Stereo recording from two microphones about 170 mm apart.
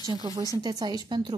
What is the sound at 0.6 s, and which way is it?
Speech, 25° right (ahead or behind).